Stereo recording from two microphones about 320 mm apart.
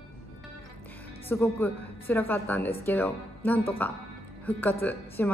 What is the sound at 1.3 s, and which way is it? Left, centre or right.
A woman's voice, centre.